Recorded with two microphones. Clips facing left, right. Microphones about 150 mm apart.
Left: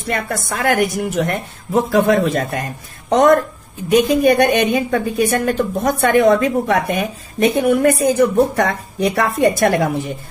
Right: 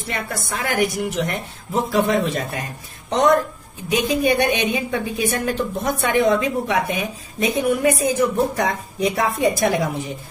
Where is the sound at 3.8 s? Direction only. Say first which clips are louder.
Left 6 dB; 50° left (ahead or behind).